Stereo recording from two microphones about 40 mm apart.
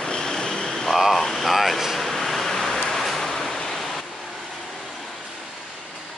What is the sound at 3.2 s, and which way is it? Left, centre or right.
Waves, centre.